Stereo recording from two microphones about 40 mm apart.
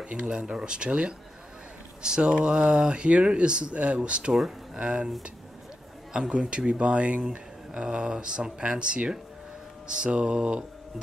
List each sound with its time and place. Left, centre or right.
0.0 s speech: right
4.3 s speech: centre
4.7 s speech: right
6.1 s speech: right